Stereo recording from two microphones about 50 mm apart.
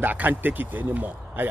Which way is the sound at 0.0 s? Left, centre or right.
Right.